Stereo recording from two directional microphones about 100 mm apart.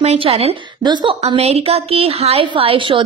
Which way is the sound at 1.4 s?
90° right.